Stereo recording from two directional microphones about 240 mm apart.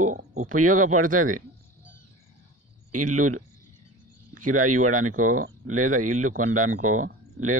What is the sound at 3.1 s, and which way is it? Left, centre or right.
Speech, right.